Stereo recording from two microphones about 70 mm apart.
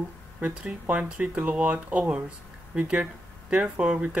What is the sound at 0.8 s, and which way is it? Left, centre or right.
Speech, centre.